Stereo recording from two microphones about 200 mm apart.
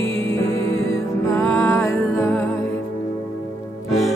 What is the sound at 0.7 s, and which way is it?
Music, 80° left.